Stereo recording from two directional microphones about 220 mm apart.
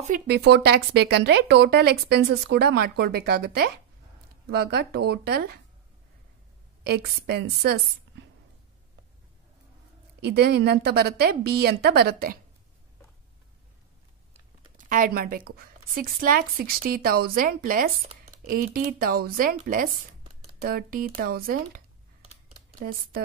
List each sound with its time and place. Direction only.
0.3 s speech: 50° right (ahead or behind)
6.8 s speech: 45° right (ahead or behind)
10.2 s speech: 45° right (ahead or behind)
14.9 s speech: 40° right (ahead or behind)